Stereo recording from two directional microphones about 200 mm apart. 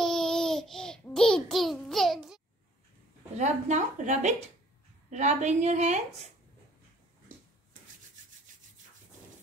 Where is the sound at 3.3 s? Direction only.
35° right (ahead or behind).